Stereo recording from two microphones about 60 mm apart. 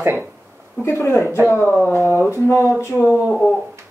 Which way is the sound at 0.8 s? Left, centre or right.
Left.